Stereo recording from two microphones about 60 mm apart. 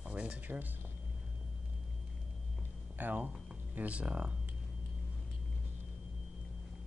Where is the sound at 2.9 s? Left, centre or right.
Right.